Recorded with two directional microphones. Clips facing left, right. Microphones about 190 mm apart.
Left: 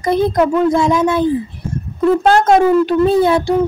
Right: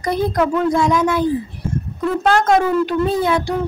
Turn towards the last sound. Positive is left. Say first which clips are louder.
# left 5 dB
turn(degrees=30)  # may be behind; listen again after turning